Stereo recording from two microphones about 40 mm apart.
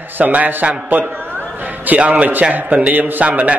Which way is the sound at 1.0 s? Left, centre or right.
Right.